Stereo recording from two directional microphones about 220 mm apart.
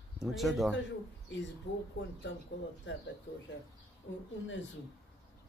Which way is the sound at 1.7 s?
50° left (ahead or behind).